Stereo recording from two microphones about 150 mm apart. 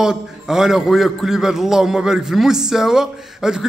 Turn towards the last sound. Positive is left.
turn(degrees=-5)  # may be behind; listen again after turning